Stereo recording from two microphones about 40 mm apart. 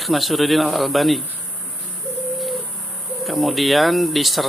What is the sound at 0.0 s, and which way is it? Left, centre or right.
Speech, centre.